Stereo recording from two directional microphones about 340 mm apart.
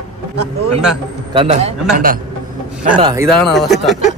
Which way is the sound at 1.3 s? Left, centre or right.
Centre.